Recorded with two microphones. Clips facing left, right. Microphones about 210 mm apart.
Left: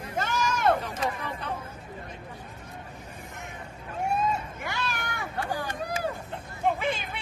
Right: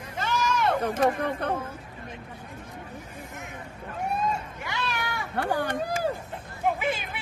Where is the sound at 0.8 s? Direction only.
60° right (ahead or behind).